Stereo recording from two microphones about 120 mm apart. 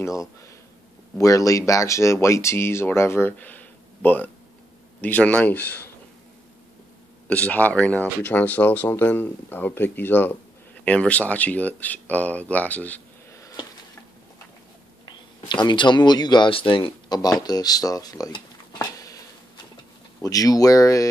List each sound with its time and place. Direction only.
1.1 s speech: 25° left (ahead or behind)
7.2 s speech: 10° left (ahead or behind)
15.0 s speech: 35° left (ahead or behind)
17.2 s speech: 35° left (ahead or behind)
20.2 s speech: 30° left (ahead or behind)